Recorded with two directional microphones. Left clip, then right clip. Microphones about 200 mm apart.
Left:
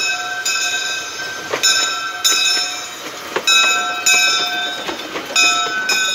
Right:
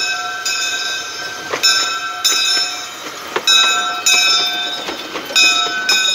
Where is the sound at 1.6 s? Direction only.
10° left (ahead or behind).